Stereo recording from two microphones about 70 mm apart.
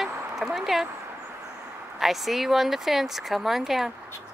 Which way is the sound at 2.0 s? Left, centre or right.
Centre.